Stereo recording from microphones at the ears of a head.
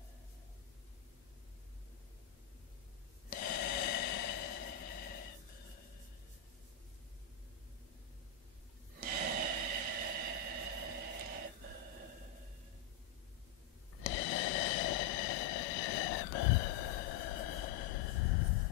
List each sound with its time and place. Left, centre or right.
3.3 s snort: left
9.0 s snort: right
13.9 s a sound: left